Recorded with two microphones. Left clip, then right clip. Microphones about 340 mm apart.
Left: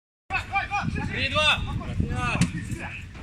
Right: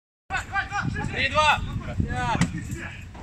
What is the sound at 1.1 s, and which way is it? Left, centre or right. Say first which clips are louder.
Speech: right 2 dB; right.